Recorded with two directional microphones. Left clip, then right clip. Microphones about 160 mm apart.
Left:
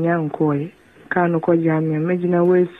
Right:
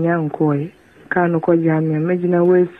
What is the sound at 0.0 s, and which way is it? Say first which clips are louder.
Speech: right 1 dB; 25° left (ahead or behind).